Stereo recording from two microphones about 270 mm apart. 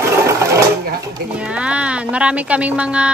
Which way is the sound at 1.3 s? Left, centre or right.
Centre.